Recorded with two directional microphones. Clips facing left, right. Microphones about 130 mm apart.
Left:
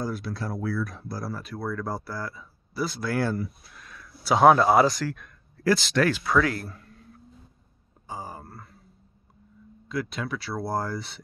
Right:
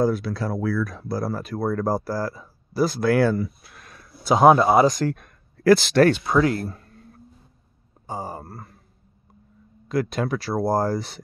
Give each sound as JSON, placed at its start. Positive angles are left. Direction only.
{"t": 0.0, "sound": "speech", "side_deg": -90}
{"t": 1.3, "sound": "speech", "side_deg": -45}
{"t": 3.1, "sound": "speech", "side_deg": -65}
{"t": 4.2, "sound": "speech", "side_deg": -20}
{"t": 5.0, "sound": "speech", "side_deg": -50}
{"t": 6.0, "sound": "speech", "side_deg": -25}
{"t": 8.1, "sound": "speech", "side_deg": -30}
{"t": 9.8, "sound": "speech", "side_deg": -45}